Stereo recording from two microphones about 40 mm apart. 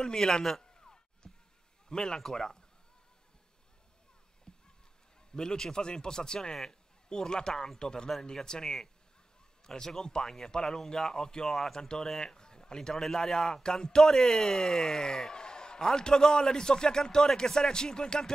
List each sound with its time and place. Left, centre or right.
0.0 s speech: centre
0.7 s a sound: centre
1.9 s speech: centre
4.5 s a sound: centre
5.3 s a man's voice: centre
11.4 s a man's voice: centre